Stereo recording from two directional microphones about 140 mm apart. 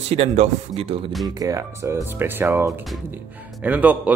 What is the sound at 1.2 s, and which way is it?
Speech, 25° right (ahead or behind).